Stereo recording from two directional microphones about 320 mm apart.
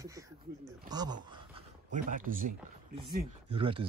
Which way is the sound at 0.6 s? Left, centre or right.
Centre.